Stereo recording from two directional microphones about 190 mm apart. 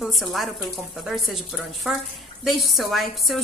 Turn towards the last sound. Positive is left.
turn(degrees=0)  # may be behind; listen again after turning